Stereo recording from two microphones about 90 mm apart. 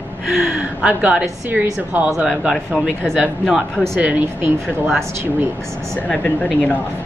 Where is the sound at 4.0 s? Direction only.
15° right (ahead or behind).